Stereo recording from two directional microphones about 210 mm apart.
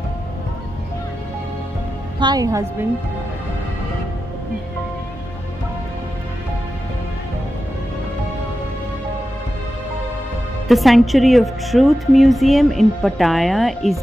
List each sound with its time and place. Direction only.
2.1 s a woman's voice: 20° right (ahead or behind)
10.7 s a woman's voice: centre (ahead or behind)